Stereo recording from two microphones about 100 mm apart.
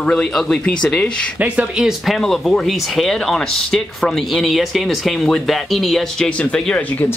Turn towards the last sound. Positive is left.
turn(degrees=10)  # may be behind; listen again after turning